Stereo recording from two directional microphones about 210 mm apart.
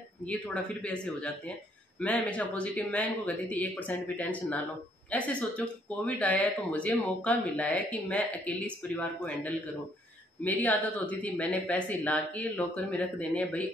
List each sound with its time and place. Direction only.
0.2 s speech: 5° left (ahead or behind)